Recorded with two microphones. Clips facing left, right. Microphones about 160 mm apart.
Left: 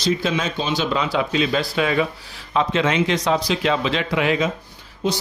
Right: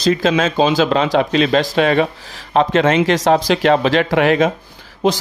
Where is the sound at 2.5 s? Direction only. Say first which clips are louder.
Right 6 dB; 55° right (ahead or behind).